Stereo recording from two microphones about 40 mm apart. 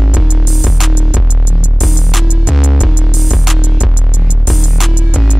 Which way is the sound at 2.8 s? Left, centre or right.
Right.